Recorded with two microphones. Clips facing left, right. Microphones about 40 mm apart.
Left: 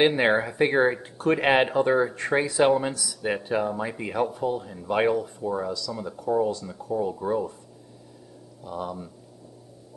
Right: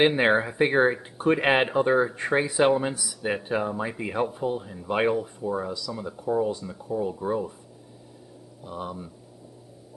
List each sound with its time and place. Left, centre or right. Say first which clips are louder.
0.0 s speech: even; centre
3.2 s speech: left 1 dB; centre
5.7 s speech: left 2 dB; centre
6.3 s speech: left 1 dB; centre
8.6 s speech: left 2 dB; centre